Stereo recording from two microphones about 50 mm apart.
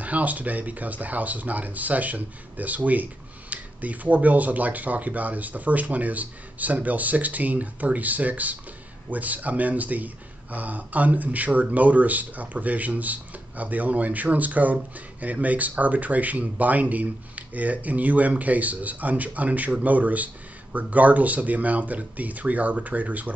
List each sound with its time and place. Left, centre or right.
0.0 s speech: right